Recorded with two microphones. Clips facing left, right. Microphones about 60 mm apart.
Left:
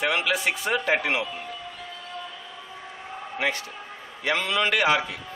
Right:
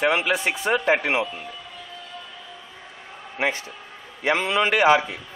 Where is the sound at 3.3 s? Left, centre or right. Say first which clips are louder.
Right 2 dB; right.